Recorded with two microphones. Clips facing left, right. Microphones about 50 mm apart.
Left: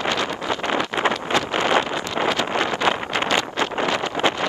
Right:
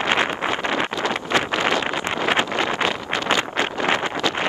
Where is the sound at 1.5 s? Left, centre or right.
Left.